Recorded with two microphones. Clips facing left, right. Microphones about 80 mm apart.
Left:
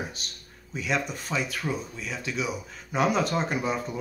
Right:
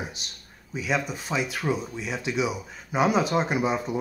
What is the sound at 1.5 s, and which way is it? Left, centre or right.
Speech, centre.